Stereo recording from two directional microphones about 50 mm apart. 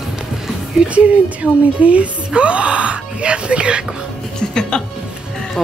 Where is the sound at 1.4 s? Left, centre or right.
Centre.